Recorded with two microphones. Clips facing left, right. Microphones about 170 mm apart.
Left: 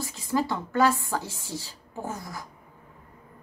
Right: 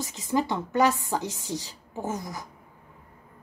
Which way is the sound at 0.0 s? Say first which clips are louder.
Right 1 dB; 20° right (ahead or behind).